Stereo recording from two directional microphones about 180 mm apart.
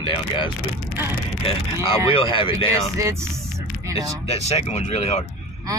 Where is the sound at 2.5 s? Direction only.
15° right (ahead or behind).